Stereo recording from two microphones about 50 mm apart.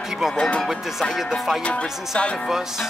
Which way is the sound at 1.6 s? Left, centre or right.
Left.